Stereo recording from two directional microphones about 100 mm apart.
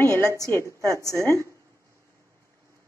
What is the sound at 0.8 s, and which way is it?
Speech, 30° right (ahead or behind).